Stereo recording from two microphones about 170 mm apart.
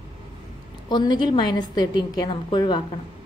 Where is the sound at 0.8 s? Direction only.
25° left (ahead or behind).